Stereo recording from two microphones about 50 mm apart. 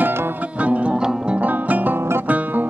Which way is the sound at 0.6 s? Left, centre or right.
Right.